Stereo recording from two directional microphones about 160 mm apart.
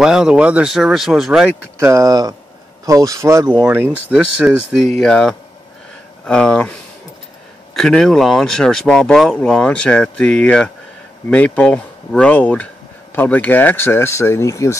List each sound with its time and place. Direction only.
0.0 s speech: 5° right (ahead or behind)
1.6 s speech: 15° right (ahead or behind); by 14.8 s 20° left (ahead or behind)